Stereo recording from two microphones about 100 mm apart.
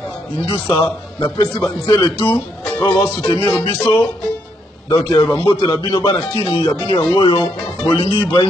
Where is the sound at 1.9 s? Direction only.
50° left (ahead or behind).